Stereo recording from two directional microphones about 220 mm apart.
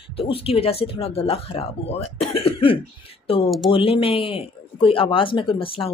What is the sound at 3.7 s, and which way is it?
Speech, 25° left (ahead or behind).